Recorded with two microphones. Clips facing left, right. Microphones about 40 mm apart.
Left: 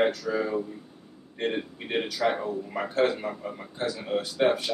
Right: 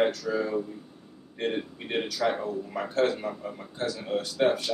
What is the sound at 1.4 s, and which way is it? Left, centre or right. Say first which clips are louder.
A man's voice: left 1 dB; centre.